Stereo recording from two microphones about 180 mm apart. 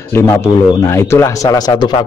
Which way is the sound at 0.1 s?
15° left (ahead or behind).